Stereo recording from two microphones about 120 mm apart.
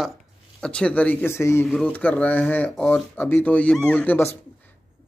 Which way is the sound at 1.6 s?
5° left (ahead or behind).